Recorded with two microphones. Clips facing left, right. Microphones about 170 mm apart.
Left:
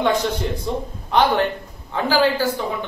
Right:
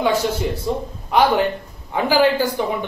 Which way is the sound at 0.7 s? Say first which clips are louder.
Right 2 dB; 5° right (ahead or behind).